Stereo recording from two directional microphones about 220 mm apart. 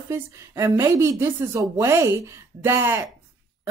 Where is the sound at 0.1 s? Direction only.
10° right (ahead or behind).